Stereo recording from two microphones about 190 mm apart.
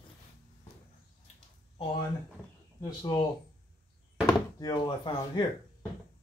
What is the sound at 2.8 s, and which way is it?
Speech, 20° left (ahead or behind).